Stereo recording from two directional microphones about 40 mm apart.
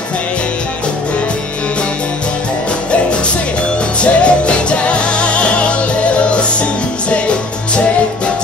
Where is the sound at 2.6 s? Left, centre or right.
Left.